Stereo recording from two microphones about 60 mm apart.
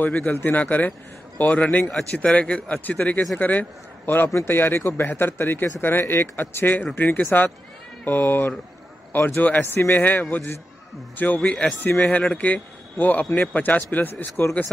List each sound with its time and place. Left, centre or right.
0.0 s a man's voice: left
4.3 s a man's voice: left
4.6 s a man's voice: left
10.3 s a man's voice: left
11.1 s a man's voice: left